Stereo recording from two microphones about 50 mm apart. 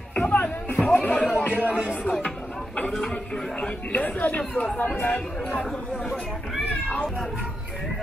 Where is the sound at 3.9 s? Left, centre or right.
Left.